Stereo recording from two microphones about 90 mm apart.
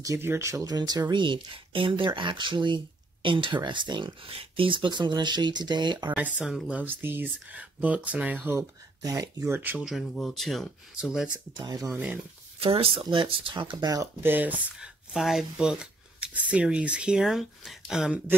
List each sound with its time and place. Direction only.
0.2 s speech: 30° right (ahead or behind)
0.7 s speech: 45° right (ahead or behind)
1.1 s speech: 60° right (ahead or behind)
6.1 s speech: 15° right (ahead or behind)
9.0 s speech: 45° right (ahead or behind)
9.5 s speech: 20° right (ahead or behind)
10.1 s speech: 5° left (ahead or behind)
11.0 s speech: 10° right (ahead or behind)
11.5 s speech: 50° right (ahead or behind)
12.5 s speech: 90° right
13.1 s speech: 70° right (ahead or behind)
14.2 s speech: 20° right (ahead or behind)
15.1 s speech: 5° right (ahead or behind)